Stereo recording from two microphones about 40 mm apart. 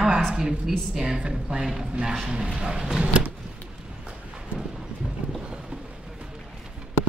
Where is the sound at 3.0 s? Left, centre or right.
Right.